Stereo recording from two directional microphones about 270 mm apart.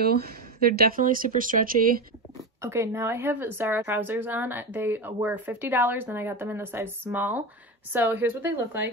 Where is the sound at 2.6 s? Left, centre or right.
Centre.